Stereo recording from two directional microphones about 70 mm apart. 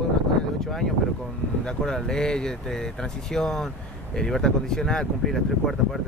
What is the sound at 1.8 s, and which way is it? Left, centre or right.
Speech, centre.